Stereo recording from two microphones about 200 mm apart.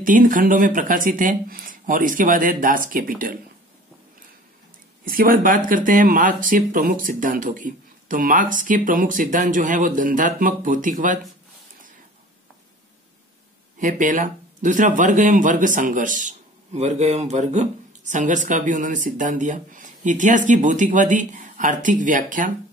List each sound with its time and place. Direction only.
0.0 s speech: 40° right (ahead or behind)
5.0 s speech: 45° right (ahead or behind)
13.7 s speech: 40° right (ahead or behind)